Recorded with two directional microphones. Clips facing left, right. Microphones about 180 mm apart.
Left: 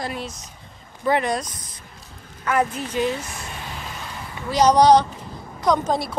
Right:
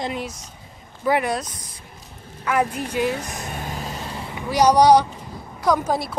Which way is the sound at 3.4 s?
45° right (ahead or behind).